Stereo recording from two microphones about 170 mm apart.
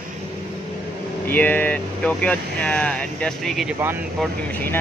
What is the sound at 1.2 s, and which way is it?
Speech, 10° left (ahead or behind).